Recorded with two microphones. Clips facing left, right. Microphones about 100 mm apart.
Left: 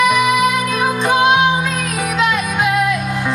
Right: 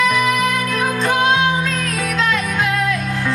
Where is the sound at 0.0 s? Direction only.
15° left (ahead or behind).